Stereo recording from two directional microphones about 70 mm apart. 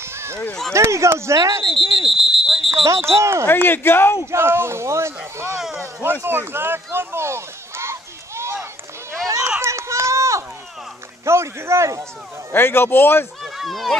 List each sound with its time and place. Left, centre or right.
0.7 s speech: right
2.0 s a sound: centre
2.9 s speech: right
3.4 s speech: left
4.3 s speech: right
5.6 s speech: centre
6.2 s a sound: right
9.6 s run: right
11.2 s speech: right
12.5 s speech: left
13.4 s run: centre